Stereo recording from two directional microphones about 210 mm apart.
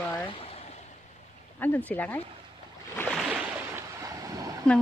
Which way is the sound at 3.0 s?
Centre (ahead or behind).